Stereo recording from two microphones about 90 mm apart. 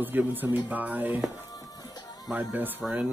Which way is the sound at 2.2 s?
20° right (ahead or behind).